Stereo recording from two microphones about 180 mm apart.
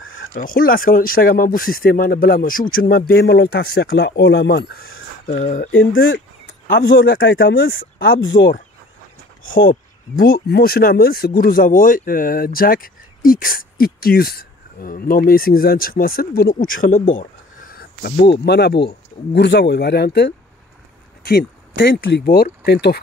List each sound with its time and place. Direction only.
0.3 s speech: 50° left (ahead or behind)
5.4 s speech: 45° left (ahead or behind)
5.7 s speech: 90° left
6.7 s speech: 60° left (ahead or behind)
7.1 s speech: 80° left
9.5 s speech: 50° left (ahead or behind)
17.7 s speech: 60° left (ahead or behind)